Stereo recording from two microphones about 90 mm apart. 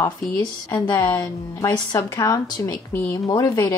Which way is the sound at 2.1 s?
35° left (ahead or behind).